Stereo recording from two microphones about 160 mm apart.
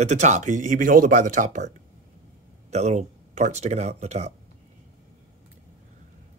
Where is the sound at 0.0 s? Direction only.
45° right (ahead or behind).